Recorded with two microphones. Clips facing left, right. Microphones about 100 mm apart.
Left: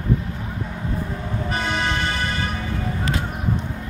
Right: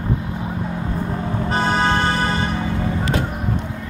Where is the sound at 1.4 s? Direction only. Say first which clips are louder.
Right 6 dB; 35° right (ahead or behind).